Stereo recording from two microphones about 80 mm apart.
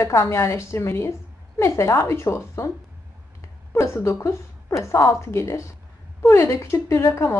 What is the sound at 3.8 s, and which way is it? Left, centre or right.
Speech, left.